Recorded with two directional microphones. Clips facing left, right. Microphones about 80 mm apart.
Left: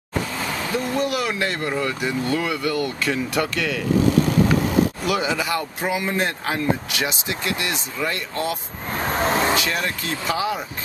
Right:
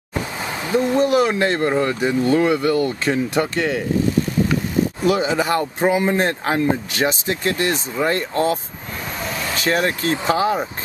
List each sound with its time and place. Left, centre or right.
0.4 s speech: right
5.0 s speech: right
9.0 s vehicle: left
9.7 s speech: right